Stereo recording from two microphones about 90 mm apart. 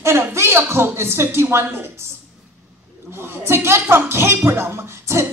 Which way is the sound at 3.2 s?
30° right (ahead or behind).